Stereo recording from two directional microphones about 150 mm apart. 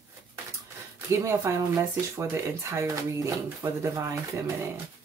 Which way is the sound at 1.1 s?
20° right (ahead or behind).